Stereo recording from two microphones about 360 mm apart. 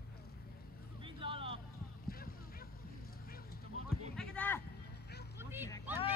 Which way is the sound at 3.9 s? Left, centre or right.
Centre.